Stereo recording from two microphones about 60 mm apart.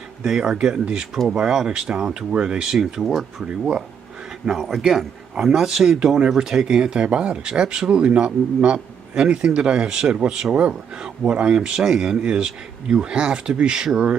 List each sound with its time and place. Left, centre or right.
0.2 s speech: centre
3.4 s speech: centre